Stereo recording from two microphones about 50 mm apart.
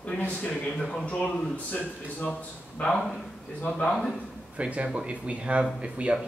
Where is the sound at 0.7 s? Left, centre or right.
Centre.